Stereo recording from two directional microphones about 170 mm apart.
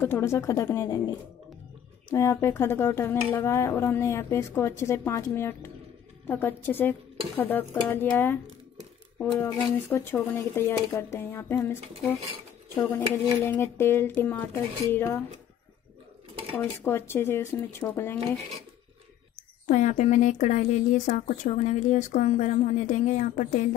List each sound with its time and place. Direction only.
0.0 s speech: 15° left (ahead or behind)
2.1 s speech: 15° left (ahead or behind)
13.4 s speech: 15° left (ahead or behind)
16.5 s speech: 15° left (ahead or behind)
19.6 s speech: 45° left (ahead or behind)